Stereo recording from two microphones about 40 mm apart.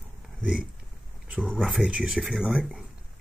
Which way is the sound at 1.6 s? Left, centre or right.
Centre.